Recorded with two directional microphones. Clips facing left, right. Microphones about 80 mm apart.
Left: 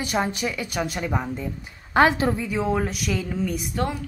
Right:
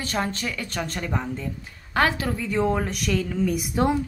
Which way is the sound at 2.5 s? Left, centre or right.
Centre.